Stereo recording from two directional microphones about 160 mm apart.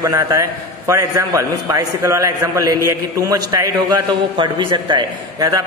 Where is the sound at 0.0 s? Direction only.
20° right (ahead or behind).